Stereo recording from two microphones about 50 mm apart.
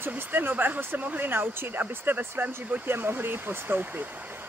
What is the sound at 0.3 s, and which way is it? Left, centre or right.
Speech, right.